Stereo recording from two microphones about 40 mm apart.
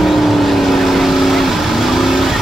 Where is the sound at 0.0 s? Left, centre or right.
Centre.